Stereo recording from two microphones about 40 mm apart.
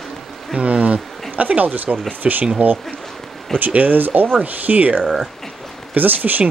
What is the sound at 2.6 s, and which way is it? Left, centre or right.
Speech, right.